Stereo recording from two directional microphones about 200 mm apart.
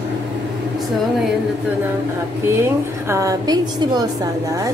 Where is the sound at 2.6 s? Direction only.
15° right (ahead or behind).